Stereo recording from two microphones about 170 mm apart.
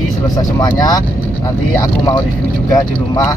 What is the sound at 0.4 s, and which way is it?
Speech, 20° left (ahead or behind).